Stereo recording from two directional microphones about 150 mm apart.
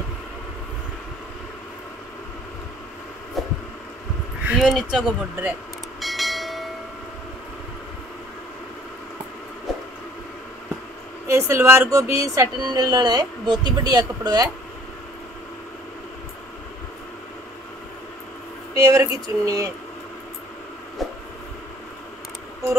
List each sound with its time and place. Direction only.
3.4 s a sound: centre (ahead or behind)
4.5 s speech: 5° right (ahead or behind)
5.9 s bell: centre (ahead or behind)
11.2 s speech: 20° right (ahead or behind)
18.8 s speech: 20° right (ahead or behind)
21.0 s a sound: centre (ahead or behind)